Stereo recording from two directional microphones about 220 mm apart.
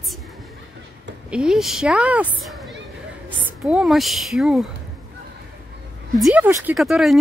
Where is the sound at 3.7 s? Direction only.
Centre (ahead or behind).